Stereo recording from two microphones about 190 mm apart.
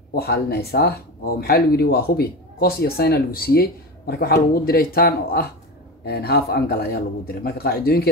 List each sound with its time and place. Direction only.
0.1 s speech: 55° left (ahead or behind)